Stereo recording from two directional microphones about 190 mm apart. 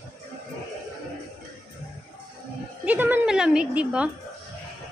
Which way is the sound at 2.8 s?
10° right (ahead or behind).